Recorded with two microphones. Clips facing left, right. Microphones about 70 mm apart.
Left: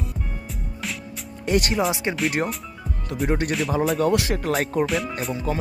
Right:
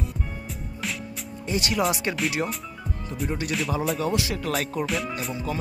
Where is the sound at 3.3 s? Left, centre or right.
Left.